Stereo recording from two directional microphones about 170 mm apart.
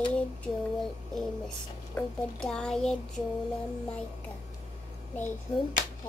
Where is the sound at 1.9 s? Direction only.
5° left (ahead or behind).